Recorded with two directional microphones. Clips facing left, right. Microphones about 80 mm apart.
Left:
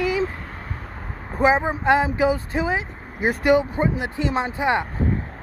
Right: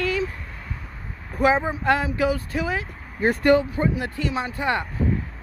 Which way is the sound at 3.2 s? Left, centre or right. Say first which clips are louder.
Even; centre.